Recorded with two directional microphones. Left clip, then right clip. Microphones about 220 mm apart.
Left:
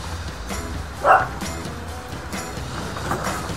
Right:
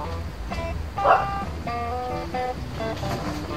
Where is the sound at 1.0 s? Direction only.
45° left (ahead or behind).